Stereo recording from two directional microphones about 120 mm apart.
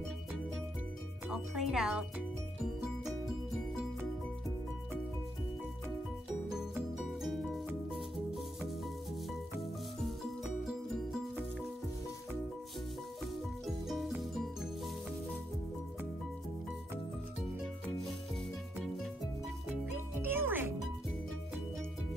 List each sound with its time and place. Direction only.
1.3 s speech: 5° right (ahead or behind)
6.5 s music: 5° right (ahead or behind)
13.8 s music: centre (ahead or behind)
17.8 s music: centre (ahead or behind)
20.2 s music: 15° right (ahead or behind)